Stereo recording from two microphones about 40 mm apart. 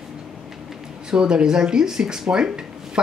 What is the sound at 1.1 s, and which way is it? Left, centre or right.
Speech, right.